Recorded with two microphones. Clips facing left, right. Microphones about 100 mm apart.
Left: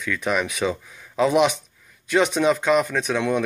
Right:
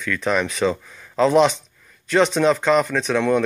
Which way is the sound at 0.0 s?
10° left (ahead or behind).